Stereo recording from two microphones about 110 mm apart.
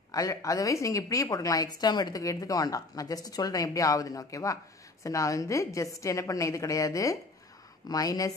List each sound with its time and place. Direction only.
0.1 s a woman's voice: 30° left (ahead or behind)